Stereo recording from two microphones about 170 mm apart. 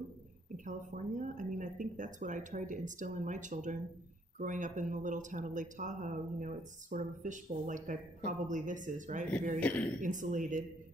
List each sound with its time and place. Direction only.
0.7 s speech: 50° right (ahead or behind)
9.6 s a woman's voice: 10° left (ahead or behind)
10.0 s speech: 50° right (ahead or behind)